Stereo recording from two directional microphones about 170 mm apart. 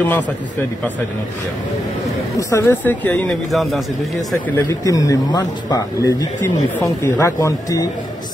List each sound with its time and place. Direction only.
0.0 s speech: 10° left (ahead or behind)
2.3 s speech: 15° left (ahead or behind)
4.6 s speech: 20° left (ahead or behind)